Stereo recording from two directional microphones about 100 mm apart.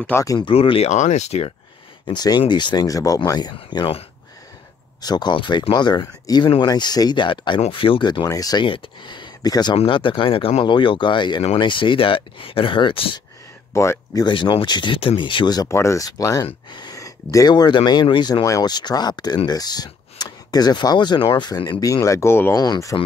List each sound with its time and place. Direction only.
0.2 s speech: 35° left (ahead or behind)
0.5 s speech: 70° left (ahead or behind); by 1.5 s 90° left
2.0 s speech: 45° left (ahead or behind)
3.7 s speech: 60° left (ahead or behind)
5.0 s speech: 45° left (ahead or behind)
8.6 s speech: 60° left (ahead or behind); by 9.8 s 45° left (ahead or behind)
9.8 s speech: 55° left (ahead or behind)
13.7 s speech: 30° left (ahead or behind)
14.2 s speech: 55° left (ahead or behind)
15.7 s speech: 30° left (ahead or behind); by 21.8 s 50° left (ahead or behind)
21.8 s speech: 35° left (ahead or behind)
22.6 s speech: 35° left (ahead or behind)